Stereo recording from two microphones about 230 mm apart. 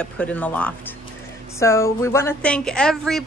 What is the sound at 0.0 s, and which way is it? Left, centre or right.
Speech, centre.